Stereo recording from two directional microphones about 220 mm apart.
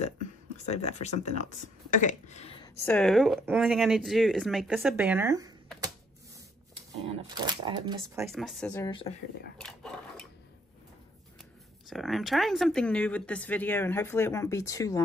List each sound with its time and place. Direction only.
0.7 s speech: 30° left (ahead or behind)
2.8 s speech: 5° left (ahead or behind); by 5.5 s 15° right (ahead or behind)
7.1 s speech: 20° right (ahead or behind)
8.3 s speech: centre (ahead or behind)
8.8 s speech: 20° left (ahead or behind)
9.6 s a sound: centre (ahead or behind)
11.9 s speech: centre (ahead or behind)